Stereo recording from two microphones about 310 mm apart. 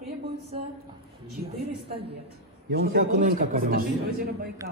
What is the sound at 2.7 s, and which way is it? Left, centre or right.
A man's voice, right.